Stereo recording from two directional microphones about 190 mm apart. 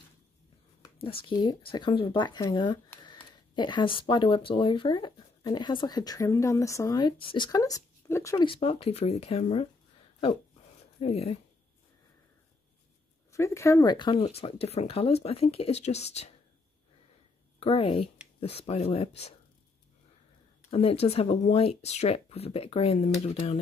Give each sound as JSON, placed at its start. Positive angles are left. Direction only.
{"t": 1.0, "sound": "speech", "side_deg": 25}
{"t": 8.5, "sound": "speech", "side_deg": 30}
{"t": 11.0, "sound": "speech", "side_deg": 30}
{"t": 13.3, "sound": "speech", "side_deg": 15}
{"t": 17.6, "sound": "speech", "side_deg": 30}
{"t": 20.7, "sound": "speech", "side_deg": 30}